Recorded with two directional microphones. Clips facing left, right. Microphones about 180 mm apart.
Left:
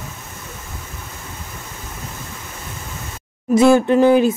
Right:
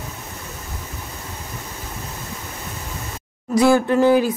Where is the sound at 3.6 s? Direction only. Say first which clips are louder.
Left 3 dB; 20° left (ahead or behind).